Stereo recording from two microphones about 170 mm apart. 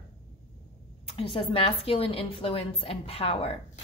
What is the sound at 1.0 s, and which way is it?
A woman's voice, 35° left (ahead or behind).